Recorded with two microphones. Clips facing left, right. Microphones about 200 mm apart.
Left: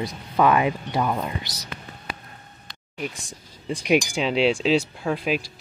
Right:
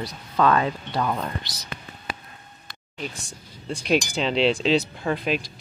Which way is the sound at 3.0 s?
15° left (ahead or behind).